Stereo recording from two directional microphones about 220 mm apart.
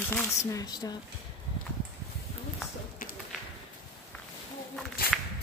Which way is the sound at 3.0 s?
40° left (ahead or behind).